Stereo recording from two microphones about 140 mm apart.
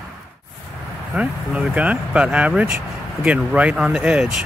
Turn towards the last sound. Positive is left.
turn(degrees=-5)  # may be behind; listen again after turning